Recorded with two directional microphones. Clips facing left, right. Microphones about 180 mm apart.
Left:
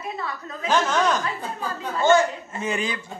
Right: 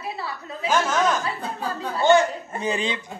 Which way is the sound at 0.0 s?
30° right (ahead or behind).